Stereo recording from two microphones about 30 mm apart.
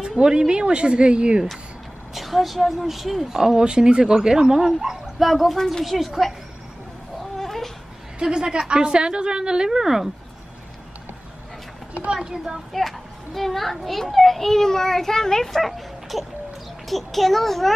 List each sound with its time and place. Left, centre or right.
0.2 s speech: right
2.1 s a woman's voice: centre
3.5 s a woman's voice: right
5.2 s a woman's voice: centre
7.3 s a sound: centre
8.2 s a woman's voice: right
12.2 s a woman's voice: right
12.7 s a child's voice: centre
16.1 s a woman's voice: centre